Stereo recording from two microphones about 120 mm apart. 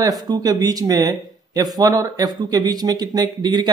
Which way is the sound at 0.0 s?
30° right (ahead or behind).